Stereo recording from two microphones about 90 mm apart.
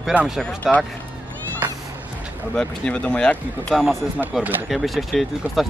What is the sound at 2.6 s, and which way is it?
Speech, 10° left (ahead or behind).